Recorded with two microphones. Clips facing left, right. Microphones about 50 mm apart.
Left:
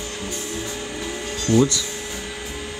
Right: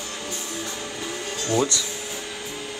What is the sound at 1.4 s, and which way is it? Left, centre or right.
Speech, centre.